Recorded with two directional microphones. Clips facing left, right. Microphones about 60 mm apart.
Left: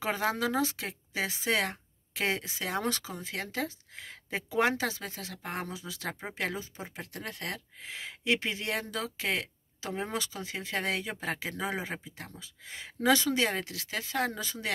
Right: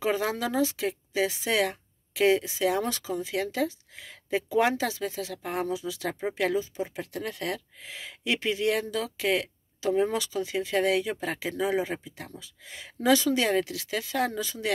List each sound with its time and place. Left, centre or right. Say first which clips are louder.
0.0 s speech: right 3 dB; left
9.4 s a sound: right 7 dB; left
10.1 s speech: right 7 dB; left